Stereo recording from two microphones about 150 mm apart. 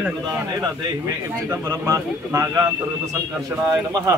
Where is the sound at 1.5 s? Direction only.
20° right (ahead or behind).